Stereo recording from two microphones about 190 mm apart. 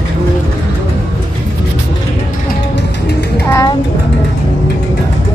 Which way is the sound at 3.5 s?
15° left (ahead or behind).